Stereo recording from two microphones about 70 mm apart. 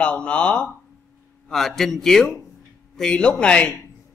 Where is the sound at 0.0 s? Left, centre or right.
Centre.